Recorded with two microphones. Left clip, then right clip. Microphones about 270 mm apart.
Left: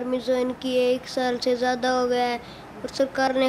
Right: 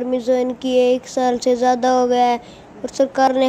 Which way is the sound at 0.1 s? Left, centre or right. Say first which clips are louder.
Right 6 dB; centre.